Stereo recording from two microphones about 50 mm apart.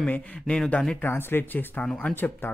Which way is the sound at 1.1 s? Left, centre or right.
Left.